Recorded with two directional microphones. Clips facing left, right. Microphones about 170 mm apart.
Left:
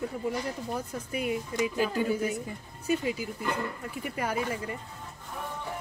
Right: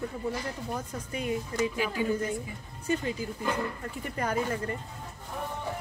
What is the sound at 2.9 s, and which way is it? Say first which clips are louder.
Speech: left 1 dB; 10° left (ahead or behind).